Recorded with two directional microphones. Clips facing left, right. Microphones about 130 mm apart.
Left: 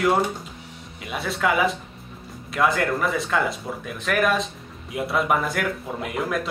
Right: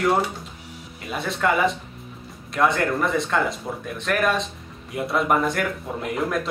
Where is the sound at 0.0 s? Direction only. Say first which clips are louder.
Even; centre (ahead or behind).